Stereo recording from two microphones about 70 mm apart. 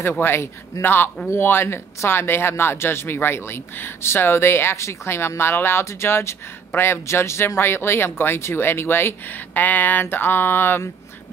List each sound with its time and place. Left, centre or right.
0.2 s speech: left